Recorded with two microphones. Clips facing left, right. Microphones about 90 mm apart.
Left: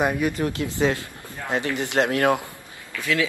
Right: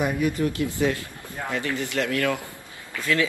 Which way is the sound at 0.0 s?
90° left.